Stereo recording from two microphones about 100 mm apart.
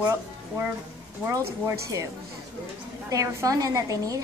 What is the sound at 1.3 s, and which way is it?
Speech, 30° right (ahead or behind).